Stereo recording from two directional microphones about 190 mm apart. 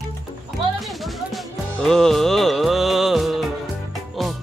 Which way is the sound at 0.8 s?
Centre (ahead or behind).